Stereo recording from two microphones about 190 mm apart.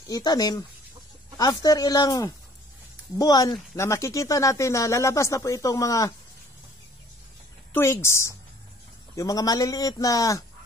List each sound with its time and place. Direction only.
0.1 s speech: 20° left (ahead or behind)
7.7 s speech: 15° left (ahead or behind)